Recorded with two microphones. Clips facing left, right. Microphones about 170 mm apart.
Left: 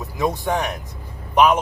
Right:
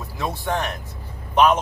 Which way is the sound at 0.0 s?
20° left (ahead or behind).